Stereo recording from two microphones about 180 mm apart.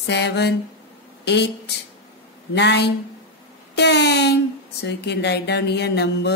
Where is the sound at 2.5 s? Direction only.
70° left (ahead or behind).